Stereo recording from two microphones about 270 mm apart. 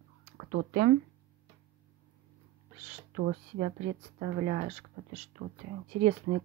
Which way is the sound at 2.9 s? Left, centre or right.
Right.